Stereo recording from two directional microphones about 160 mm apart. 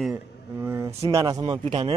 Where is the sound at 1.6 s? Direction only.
40° right (ahead or behind).